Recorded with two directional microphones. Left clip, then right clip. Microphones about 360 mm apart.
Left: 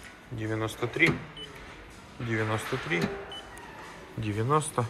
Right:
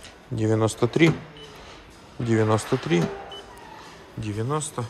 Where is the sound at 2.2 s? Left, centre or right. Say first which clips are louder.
Right 8 dB; centre.